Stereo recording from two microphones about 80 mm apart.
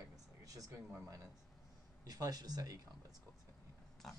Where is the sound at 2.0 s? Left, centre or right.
Right.